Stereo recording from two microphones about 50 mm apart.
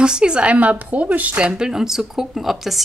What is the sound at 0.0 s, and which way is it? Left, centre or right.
Speech, centre.